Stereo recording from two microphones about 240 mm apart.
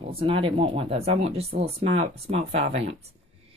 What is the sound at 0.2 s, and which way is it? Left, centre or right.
Speech, right.